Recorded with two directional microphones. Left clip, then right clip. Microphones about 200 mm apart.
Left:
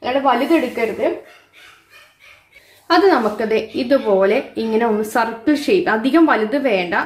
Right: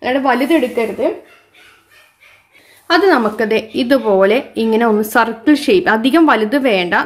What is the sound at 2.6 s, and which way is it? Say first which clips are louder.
Speech: right 1 dB; 25° right (ahead or behind).